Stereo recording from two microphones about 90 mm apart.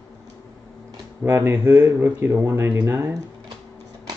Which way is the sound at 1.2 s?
25° right (ahead or behind).